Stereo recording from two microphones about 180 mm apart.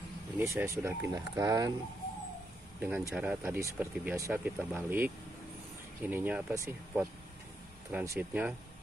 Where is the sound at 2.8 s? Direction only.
5° right (ahead or behind).